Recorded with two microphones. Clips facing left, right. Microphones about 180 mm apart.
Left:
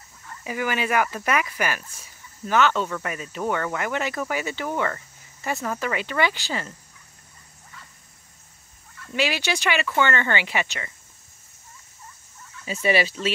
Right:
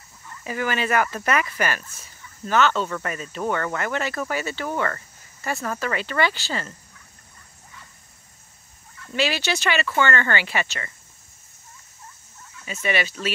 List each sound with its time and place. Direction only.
0.4 s speech: 10° left (ahead or behind)
9.0 s speech: 15° left (ahead or behind)
12.8 s speech: 30° left (ahead or behind)